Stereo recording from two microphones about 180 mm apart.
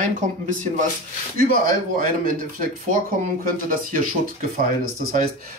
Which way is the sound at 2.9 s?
50° right (ahead or behind).